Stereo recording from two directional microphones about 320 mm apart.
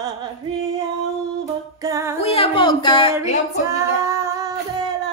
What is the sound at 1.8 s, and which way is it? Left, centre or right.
Music, centre.